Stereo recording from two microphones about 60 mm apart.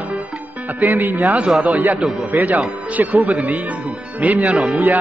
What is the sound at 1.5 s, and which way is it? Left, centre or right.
Speech, centre.